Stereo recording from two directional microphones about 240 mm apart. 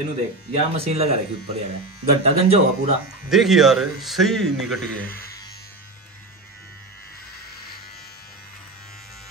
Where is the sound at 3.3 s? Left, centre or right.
Centre.